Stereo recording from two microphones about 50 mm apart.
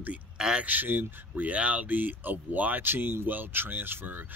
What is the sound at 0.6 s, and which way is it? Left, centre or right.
Speech, right.